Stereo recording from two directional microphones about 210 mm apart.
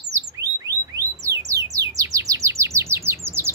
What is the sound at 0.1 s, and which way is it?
Music, 15° right (ahead or behind).